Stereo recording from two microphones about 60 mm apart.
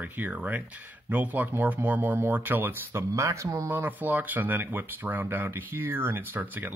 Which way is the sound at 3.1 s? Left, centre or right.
Right.